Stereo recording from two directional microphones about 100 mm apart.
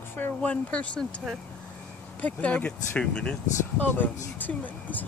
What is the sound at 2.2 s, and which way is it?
Speech, 15° left (ahead or behind).